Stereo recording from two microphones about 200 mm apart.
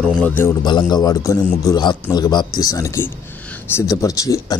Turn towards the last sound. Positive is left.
turn(degrees=15)  # may be behind; listen again after turning